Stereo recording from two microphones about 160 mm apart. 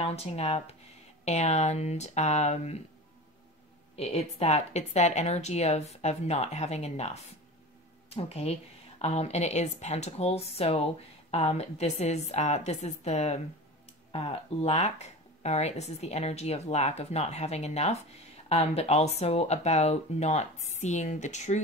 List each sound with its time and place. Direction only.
0.0 s speech: 40° left (ahead or behind)
3.9 s speech: 40° left (ahead or behind)